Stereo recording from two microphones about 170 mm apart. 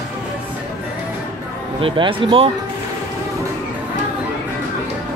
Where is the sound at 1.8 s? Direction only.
30° right (ahead or behind).